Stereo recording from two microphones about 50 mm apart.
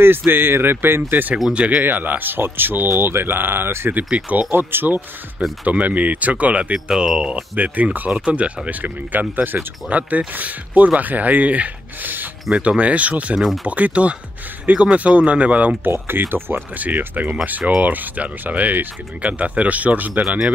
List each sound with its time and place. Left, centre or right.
0.3 s speech: right
1.5 s speech: right
1.8 s speech: right
3.9 s speech: right
4.5 s speech: right
5.7 s speech: right
6.7 s speech: centre
7.5 s speech: right
9.8 s speech: right
15.8 s speech: right
16.7 s speech: right
20.2 s speech: centre